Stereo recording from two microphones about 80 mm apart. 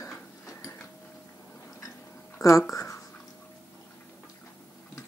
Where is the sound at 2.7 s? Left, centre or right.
Left.